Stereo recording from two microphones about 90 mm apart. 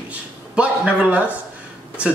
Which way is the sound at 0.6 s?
15° right (ahead or behind).